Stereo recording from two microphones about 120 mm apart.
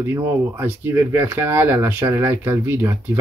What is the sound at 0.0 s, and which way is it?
Speech, 20° right (ahead or behind).